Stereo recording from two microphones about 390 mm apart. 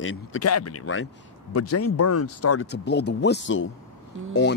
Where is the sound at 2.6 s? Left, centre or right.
Left.